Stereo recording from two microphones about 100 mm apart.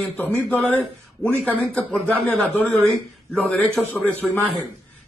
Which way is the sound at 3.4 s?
15° left (ahead or behind).